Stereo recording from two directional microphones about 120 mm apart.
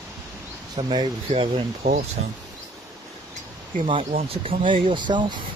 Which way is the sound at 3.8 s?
45° right (ahead or behind).